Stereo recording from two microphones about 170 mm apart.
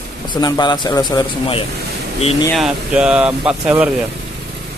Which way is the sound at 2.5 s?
5° right (ahead or behind).